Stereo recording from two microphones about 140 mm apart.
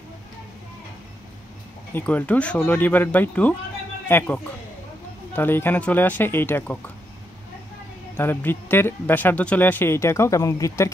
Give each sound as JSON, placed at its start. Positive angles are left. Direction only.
{"t": 2.0, "sound": "speech", "side_deg": 10}
{"t": 8.2, "sound": "speech", "side_deg": 15}